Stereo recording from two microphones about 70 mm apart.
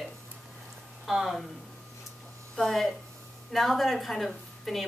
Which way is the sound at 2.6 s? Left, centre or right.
Centre.